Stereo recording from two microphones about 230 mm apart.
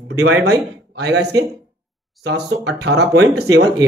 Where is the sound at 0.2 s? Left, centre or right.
Right.